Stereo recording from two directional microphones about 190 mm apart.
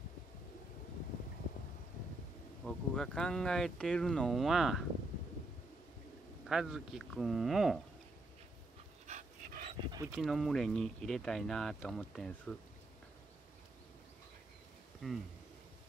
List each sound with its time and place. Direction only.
2.6 s speech: 5° left (ahead or behind)
6.4 s speech: centre (ahead or behind)
9.0 s dog: 40° right (ahead or behind)
9.8 s dog: 20° right (ahead or behind)
10.1 s speech: centre (ahead or behind)
15.0 s speech: centre (ahead or behind)